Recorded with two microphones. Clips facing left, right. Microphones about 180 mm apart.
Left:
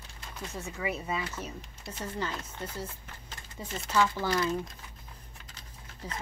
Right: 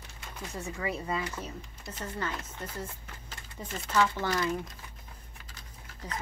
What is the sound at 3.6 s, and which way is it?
Speech, 5° left (ahead or behind).